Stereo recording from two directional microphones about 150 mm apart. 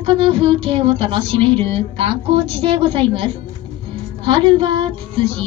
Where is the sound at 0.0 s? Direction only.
35° right (ahead or behind).